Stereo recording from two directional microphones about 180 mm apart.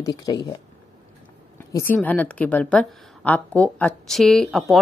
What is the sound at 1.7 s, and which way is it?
A woman's voice, 10° left (ahead or behind).